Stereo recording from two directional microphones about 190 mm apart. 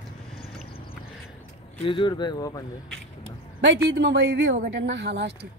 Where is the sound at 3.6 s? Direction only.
70° right (ahead or behind).